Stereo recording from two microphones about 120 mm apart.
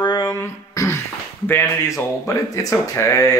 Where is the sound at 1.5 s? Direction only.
20° left (ahead or behind).